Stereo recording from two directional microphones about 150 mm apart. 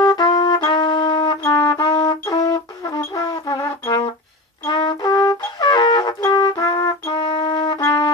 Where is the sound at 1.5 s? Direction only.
20° left (ahead or behind).